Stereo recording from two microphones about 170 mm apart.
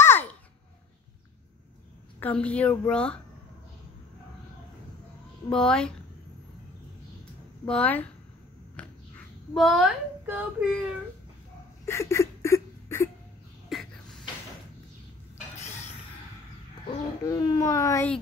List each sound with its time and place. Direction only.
0.0 s babbling: 10° left (ahead or behind)
2.1 s a woman's voice: 10° left (ahead or behind)
5.5 s speech: 5° left (ahead or behind)
7.6 s a woman's voice: 5° left (ahead or behind)
8.8 s a sound: 10° left (ahead or behind)
9.5 s speech: centre (ahead or behind)
11.8 s a sound: 15° left (ahead or behind)
13.7 s a sound: centre (ahead or behind)
16.8 s speech: 25° left (ahead or behind)